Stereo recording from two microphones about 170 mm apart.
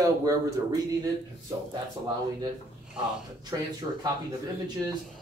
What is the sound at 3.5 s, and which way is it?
Speech, 20° right (ahead or behind).